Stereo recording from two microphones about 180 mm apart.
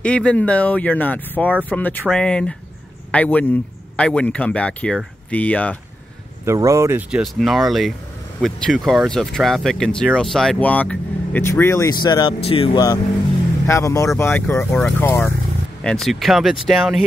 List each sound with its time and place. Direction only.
0.0 s speech: 5° left (ahead or behind)
6.4 s speech: 15° right (ahead or behind)